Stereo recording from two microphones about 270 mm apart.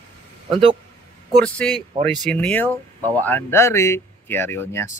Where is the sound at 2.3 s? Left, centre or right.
Centre.